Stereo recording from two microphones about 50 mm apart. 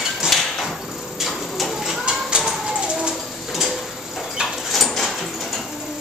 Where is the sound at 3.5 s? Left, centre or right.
Centre.